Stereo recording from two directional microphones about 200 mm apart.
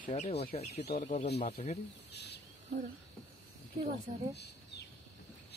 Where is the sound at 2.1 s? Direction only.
55° left (ahead or behind).